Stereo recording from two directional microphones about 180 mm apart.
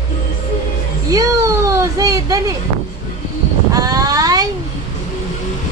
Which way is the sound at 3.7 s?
20° right (ahead or behind).